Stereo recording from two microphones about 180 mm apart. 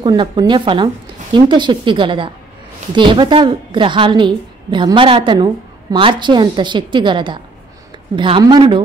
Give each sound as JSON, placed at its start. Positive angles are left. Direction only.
{"t": 0.0, "sound": "a woman's voice", "side_deg": -25}